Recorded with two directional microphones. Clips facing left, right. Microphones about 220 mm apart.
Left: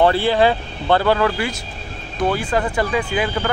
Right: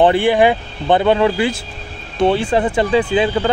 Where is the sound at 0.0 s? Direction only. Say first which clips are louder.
Right 3 dB; 15° right (ahead or behind).